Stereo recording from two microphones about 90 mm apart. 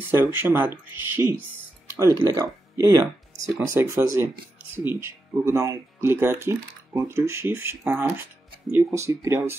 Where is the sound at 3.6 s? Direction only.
30° right (ahead or behind).